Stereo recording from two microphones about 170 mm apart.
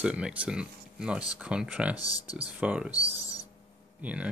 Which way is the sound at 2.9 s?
20° left (ahead or behind).